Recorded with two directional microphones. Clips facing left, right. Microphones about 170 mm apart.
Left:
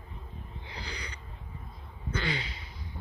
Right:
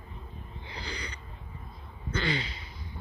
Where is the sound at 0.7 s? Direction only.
10° left (ahead or behind).